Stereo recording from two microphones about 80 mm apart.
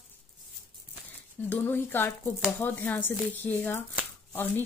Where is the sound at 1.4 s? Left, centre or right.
Left.